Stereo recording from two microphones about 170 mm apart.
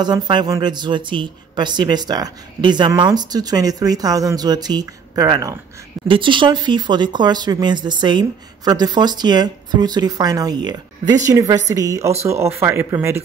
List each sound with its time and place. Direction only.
0.0 s speech: 25° right (ahead or behind)